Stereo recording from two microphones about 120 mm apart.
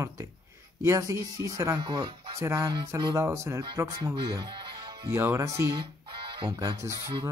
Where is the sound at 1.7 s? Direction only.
40° right (ahead or behind).